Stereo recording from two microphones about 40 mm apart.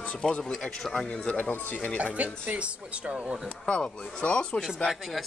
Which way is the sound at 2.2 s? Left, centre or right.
Right.